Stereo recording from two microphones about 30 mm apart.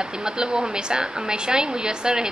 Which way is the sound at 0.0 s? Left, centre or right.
Right.